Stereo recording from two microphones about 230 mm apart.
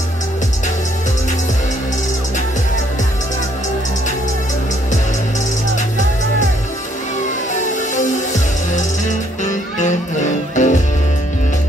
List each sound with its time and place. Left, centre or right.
7.9 s music: left